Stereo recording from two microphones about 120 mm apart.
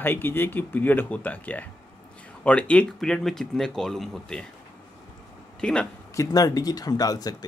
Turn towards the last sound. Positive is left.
turn(degrees=30)  # may be behind; listen again after turning